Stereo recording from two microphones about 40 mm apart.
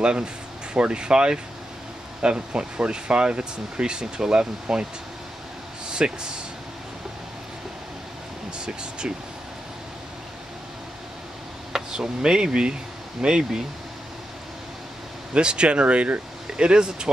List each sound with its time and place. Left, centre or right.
0.0 s speech: right
5.9 s speech: right
8.5 s speech: right
11.9 s speech: centre
15.3 s speech: right